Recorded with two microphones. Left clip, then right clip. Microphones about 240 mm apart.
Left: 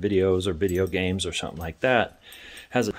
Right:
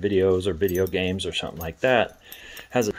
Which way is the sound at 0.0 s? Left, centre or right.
Centre.